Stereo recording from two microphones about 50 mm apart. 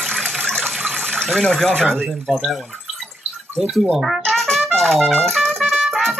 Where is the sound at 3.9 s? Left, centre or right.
Centre.